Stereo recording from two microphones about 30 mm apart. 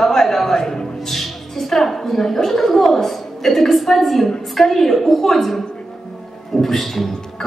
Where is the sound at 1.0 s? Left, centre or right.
Centre.